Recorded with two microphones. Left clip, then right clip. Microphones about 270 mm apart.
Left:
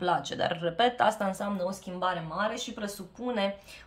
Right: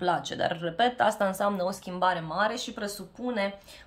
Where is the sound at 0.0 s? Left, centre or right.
Centre.